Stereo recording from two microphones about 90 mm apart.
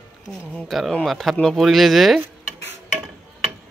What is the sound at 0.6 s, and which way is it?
Speech, centre (ahead or behind).